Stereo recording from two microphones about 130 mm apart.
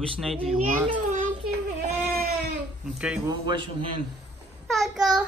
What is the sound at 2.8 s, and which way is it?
Speech, 10° right (ahead or behind).